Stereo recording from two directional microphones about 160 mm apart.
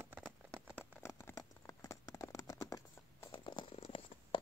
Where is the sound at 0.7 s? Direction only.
15° left (ahead or behind).